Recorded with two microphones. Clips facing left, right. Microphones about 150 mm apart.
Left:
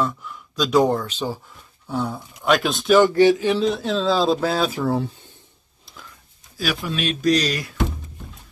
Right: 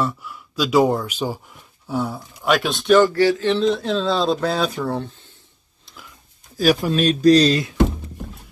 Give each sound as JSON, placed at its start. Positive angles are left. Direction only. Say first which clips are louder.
{"t": 0.0, "sound": "speech", "louder": "even", "side_deg": -5}
{"t": 3.0, "sound": "speech", "louder": "left 1 dB", "side_deg": 20}
{"t": 5.9, "sound": "a sound", "louder": "even", "side_deg": 5}
{"t": 6.5, "sound": "speech", "louder": "right 8 dB", "side_deg": -40}